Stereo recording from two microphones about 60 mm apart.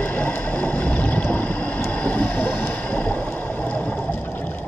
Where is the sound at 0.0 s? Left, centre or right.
Left.